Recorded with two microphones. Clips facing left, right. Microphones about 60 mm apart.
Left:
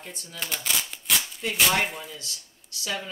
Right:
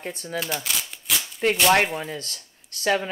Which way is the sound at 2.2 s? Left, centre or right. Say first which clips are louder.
Right 4 dB; right.